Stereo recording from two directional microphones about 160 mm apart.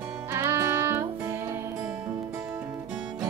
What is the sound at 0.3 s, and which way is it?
Music, 15° right (ahead or behind).